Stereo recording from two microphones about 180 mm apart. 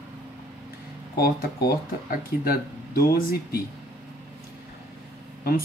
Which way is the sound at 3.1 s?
55° left (ahead or behind).